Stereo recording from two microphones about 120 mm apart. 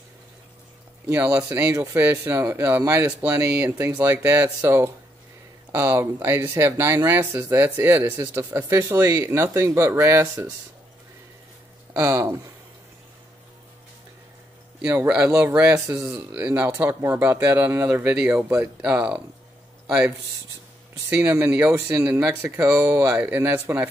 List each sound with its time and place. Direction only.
1.1 s speech: 20° right (ahead or behind)
12.0 s speech: 25° right (ahead or behind)
14.8 s speech: 10° right (ahead or behind)
15.3 s speech: 20° right (ahead or behind)
15.9 s speech: 5° right (ahead or behind)
21.1 s speech: 15° right (ahead or behind)